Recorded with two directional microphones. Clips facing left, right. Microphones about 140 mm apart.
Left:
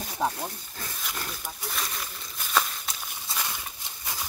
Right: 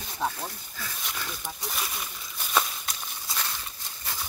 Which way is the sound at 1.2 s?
Centre (ahead or behind).